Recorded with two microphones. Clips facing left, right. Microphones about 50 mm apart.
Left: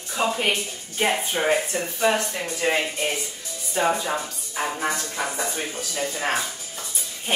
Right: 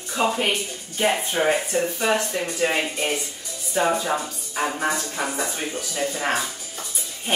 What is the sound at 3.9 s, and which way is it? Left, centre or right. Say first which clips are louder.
Speech: right 2 dB; centre.